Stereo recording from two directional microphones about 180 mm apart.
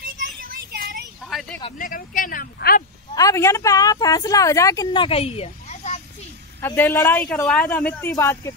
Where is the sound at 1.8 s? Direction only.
50° left (ahead or behind).